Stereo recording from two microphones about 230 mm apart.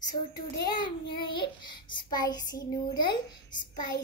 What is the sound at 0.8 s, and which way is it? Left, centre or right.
Child singing, left.